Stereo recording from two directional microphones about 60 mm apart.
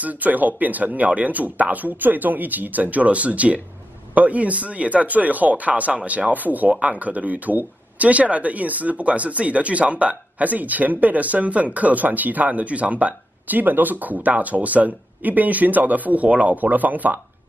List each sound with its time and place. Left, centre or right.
0.0 s speech: right